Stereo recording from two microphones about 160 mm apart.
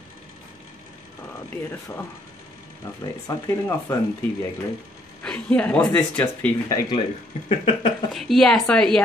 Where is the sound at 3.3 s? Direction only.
15° left (ahead or behind).